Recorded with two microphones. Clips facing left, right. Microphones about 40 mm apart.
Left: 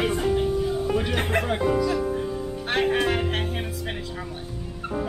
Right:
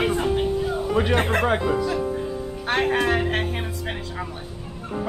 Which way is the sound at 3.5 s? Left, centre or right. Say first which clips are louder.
Right 1 dB; centre.